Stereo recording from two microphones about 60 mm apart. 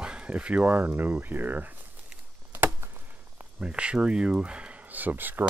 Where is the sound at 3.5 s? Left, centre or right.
Centre.